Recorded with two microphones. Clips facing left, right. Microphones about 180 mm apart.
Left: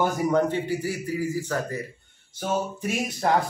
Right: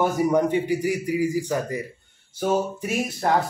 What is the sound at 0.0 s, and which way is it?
Speech, 10° right (ahead or behind).